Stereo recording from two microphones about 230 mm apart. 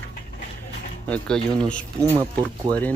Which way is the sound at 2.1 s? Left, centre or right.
Centre.